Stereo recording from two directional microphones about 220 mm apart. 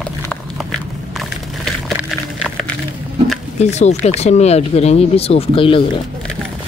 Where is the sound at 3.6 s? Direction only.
30° left (ahead or behind).